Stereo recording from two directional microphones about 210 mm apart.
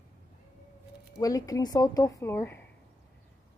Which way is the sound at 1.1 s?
15° left (ahead or behind).